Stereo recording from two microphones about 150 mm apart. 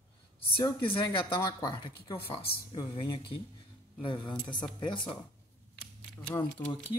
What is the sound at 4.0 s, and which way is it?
Speech, 35° left (ahead or behind).